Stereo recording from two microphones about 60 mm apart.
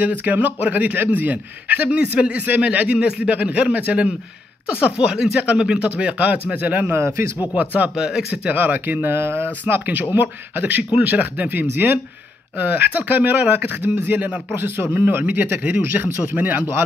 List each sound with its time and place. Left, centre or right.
0.2 s a man's voice: right
6.9 s a man's voice: right
7.5 s a man's voice: right
8.0 s speech: centre
8.5 s speech: right
10.8 s speech: centre
11.1 s a man's voice: right